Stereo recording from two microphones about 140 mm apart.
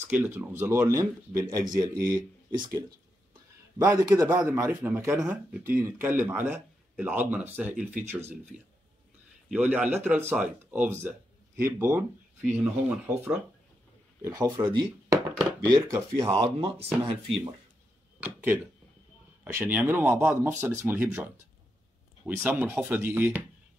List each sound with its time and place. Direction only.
0.1 s speech: 15° right (ahead or behind)
3.7 s speech: 25° right (ahead or behind)
9.5 s speech: 10° right (ahead or behind)
14.7 s speech: 30° right (ahead or behind)
16.6 s speech: 40° right (ahead or behind)
18.2 s speech: 10° right (ahead or behind)